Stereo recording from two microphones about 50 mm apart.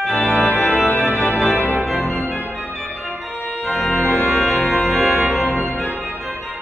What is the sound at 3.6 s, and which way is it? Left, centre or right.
Organ, centre.